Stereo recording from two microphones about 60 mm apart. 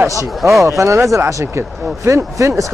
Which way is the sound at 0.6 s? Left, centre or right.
Right.